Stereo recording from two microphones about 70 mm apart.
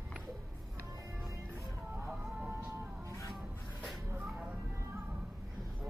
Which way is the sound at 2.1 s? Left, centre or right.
Right.